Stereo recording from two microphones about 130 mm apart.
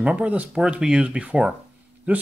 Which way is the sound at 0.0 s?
10° right (ahead or behind).